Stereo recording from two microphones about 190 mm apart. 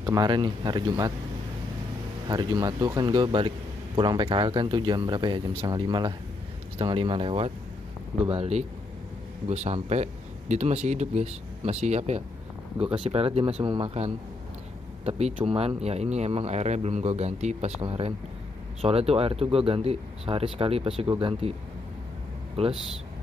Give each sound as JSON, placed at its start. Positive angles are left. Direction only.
{"t": 0.0, "sound": "speech", "side_deg": -20}
{"t": 2.2, "sound": "speech", "side_deg": -25}
{"t": 22.6, "sound": "speech", "side_deg": -30}